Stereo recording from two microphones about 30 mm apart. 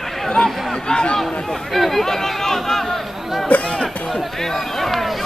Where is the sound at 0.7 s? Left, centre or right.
Left.